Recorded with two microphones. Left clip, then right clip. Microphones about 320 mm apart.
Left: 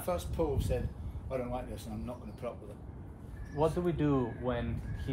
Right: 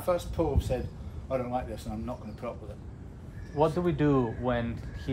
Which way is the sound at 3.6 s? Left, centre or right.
Right.